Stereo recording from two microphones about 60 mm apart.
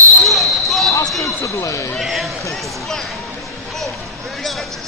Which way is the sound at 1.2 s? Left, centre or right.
Left.